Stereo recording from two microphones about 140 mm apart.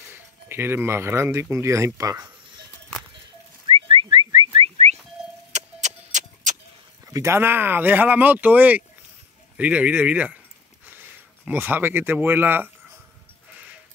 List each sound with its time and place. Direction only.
0.1 s speech: 15° right (ahead or behind)
3.6 s whistling: 40° right (ahead or behind)
5.8 s a sound: 60° right (ahead or behind)
7.1 s speech: 20° right (ahead or behind)